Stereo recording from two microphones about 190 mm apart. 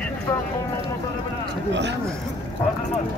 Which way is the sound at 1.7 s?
65° right (ahead or behind).